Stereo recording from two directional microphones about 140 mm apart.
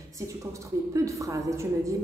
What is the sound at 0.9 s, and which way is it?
A woman's voice, 20° right (ahead or behind).